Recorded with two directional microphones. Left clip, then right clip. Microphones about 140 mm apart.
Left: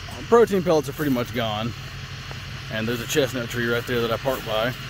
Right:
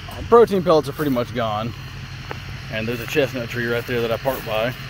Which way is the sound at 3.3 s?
25° left (ahead or behind).